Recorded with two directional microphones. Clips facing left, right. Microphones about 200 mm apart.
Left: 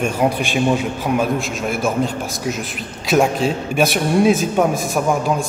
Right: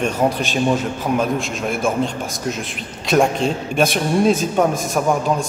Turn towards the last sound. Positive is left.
turn(degrees=5)  # may be behind; listen again after turning